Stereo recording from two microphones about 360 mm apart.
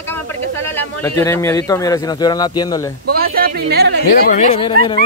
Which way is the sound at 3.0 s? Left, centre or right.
Right.